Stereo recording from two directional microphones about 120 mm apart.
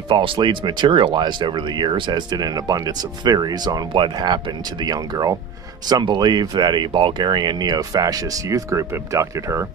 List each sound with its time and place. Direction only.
0.1 s speech: 45° right (ahead or behind); by 9.7 s 25° right (ahead or behind)